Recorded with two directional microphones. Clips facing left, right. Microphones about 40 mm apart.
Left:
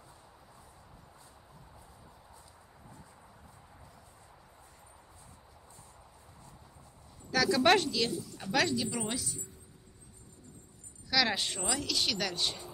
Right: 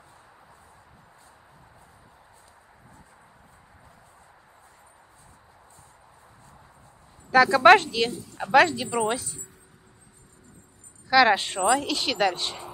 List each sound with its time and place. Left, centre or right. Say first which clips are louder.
7.2 s a woman's voice: right 10 dB; right
11.1 s a woman's voice: right 11 dB; right